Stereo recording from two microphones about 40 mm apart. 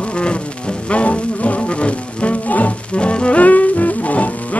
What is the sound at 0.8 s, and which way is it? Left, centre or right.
Music, left.